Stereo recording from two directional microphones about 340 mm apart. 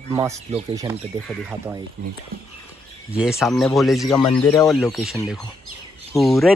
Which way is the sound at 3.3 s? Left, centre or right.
Centre.